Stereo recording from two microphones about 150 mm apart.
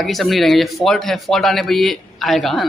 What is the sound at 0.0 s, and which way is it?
Speech, centre (ahead or behind).